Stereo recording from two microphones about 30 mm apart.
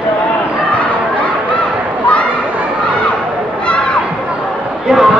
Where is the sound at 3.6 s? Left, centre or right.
Left.